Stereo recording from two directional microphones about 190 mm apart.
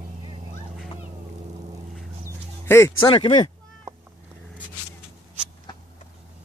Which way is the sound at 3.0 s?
25° left (ahead or behind).